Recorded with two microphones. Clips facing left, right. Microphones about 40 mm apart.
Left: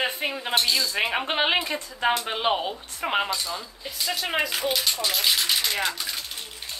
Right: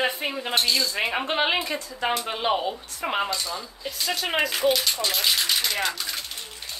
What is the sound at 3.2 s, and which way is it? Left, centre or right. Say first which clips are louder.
Speech: right 1 dB; centre.